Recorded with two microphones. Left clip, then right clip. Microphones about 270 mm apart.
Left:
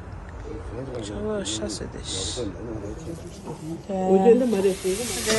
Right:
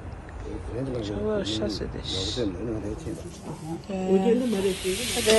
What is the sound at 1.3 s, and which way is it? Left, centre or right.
Speech, centre.